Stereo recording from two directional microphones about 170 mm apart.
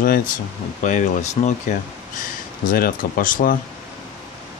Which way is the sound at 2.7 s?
55° left (ahead or behind).